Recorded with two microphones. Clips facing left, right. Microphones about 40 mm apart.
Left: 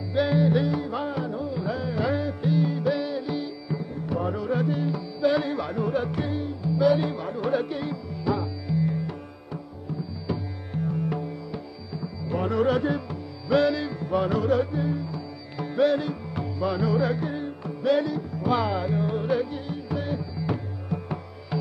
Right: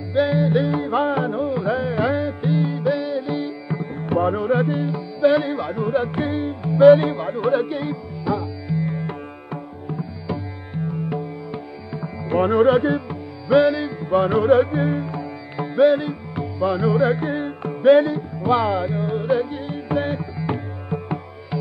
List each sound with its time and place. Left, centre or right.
0.1 s music: centre; by 10.0 s right
10.2 s music: right
11.9 s music: right
15.5 s music: right
18.4 s music: right
19.7 s music: right